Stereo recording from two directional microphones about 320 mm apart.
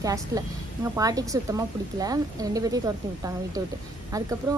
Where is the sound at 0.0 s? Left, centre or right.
Centre.